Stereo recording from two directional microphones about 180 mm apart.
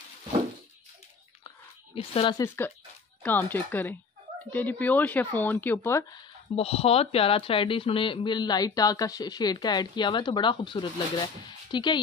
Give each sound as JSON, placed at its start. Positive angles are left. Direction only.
{"t": 2.0, "sound": "speech", "side_deg": 30}
{"t": 2.4, "sound": "speech", "side_deg": 15}
{"t": 6.5, "sound": "speech", "side_deg": 35}